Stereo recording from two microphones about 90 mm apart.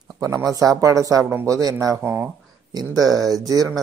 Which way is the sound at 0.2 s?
40° right (ahead or behind).